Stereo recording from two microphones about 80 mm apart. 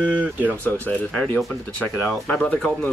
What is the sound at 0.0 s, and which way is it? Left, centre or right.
Speech, centre.